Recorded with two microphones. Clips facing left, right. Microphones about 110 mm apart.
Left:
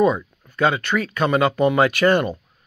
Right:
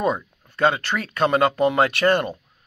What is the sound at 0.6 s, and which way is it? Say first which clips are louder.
Speech: left 1 dB; 45° right (ahead or behind).